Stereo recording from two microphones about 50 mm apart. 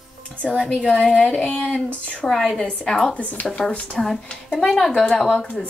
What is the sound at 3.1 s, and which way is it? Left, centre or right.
Speech, left.